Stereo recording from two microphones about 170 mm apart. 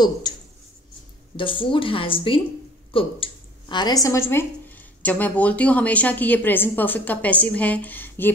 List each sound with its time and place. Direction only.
1.3 s a woman's voice: 30° left (ahead or behind); by 8.3 s 10° left (ahead or behind)